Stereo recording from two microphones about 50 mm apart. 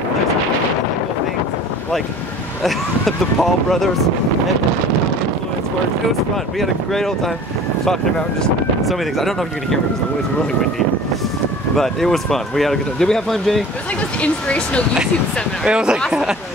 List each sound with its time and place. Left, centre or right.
2.6 s speech: centre
6.6 s speech: centre
11.7 s speech: centre
14.2 s speech: left
15.6 s speech: centre